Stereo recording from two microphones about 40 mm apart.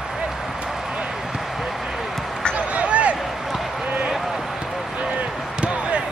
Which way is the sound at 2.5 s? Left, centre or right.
Right.